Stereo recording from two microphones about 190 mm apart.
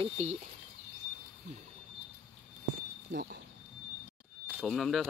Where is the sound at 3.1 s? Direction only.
60° right (ahead or behind).